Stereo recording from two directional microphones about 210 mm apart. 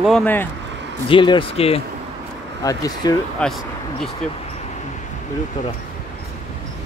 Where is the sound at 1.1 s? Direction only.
25° left (ahead or behind).